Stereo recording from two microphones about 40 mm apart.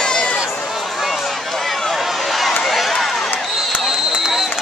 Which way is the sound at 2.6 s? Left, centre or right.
Centre.